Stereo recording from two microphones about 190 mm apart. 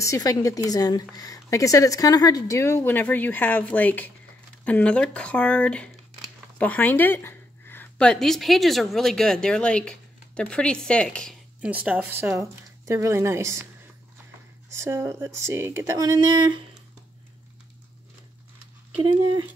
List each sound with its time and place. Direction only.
0.0 s a woman's voice: 15° left (ahead or behind); by 13.7 s 15° right (ahead or behind)
14.7 s speech: 15° right (ahead or behind)